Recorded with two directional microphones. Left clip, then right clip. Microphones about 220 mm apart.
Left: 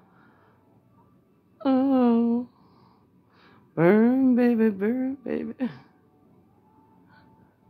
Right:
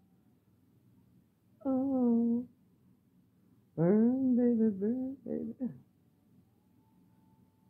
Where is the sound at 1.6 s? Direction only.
30° left (ahead or behind).